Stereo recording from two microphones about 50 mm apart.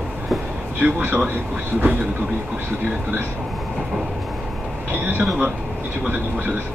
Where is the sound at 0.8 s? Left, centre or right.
Right.